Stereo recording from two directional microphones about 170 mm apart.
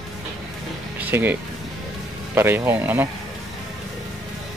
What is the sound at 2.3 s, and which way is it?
Speech, 15° right (ahead or behind).